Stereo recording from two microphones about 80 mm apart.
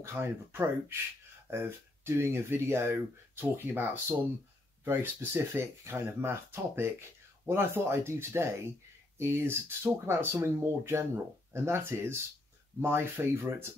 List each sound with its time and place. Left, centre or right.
0.0 s speech: right